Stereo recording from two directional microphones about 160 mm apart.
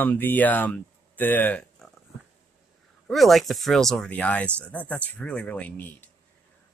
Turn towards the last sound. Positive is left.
turn(degrees=10)  # may be behind; listen again after turning